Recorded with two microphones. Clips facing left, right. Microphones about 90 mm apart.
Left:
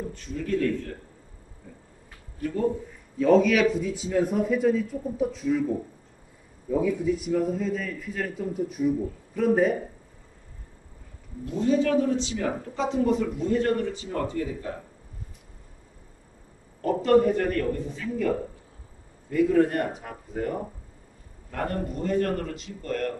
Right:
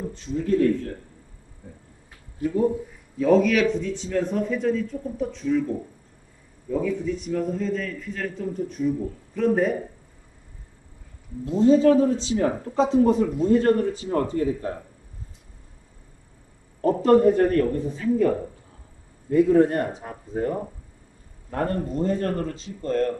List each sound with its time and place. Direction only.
0.1 s a man's voice: 25° right (ahead or behind)
2.4 s speech: 15° right (ahead or behind)
3.2 s a man's voice: centre (ahead or behind)
11.4 s speech: 30° right (ahead or behind)
16.8 s speech: 30° right (ahead or behind)
19.3 s a man's voice: 25° right (ahead or behind)